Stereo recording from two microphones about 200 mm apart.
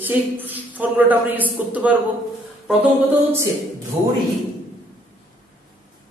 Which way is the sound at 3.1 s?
10° right (ahead or behind).